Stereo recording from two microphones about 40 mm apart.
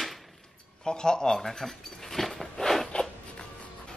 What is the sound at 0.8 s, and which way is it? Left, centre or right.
Speech, centre.